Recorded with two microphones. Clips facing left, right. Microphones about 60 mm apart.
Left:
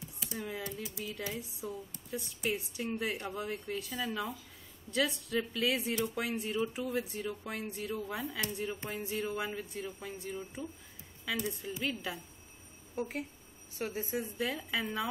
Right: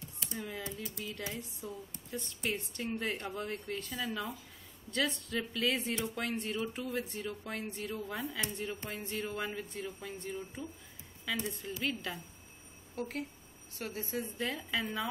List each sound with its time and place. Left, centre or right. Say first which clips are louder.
0.2 s typing: left 2 dB; centre
0.7 s speech: left 1 dB; centre